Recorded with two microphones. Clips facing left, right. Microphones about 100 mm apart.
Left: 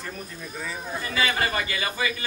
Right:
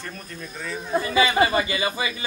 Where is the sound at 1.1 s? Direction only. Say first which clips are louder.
Right 6 dB; 20° right (ahead or behind).